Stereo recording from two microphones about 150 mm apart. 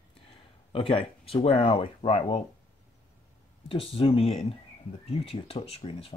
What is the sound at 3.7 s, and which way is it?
Speech, 40° left (ahead or behind).